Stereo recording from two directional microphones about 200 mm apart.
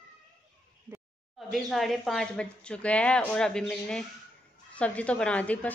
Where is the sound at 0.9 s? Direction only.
10° right (ahead or behind).